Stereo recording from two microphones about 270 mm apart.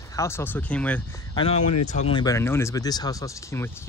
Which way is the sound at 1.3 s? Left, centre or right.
Centre.